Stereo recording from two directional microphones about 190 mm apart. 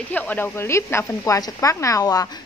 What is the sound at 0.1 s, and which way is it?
Speech, 10° left (ahead or behind).